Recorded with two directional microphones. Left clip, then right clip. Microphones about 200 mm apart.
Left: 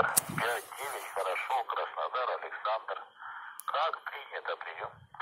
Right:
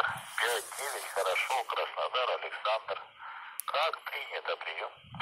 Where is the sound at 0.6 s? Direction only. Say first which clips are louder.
Right 1 dB; centre (ahead or behind).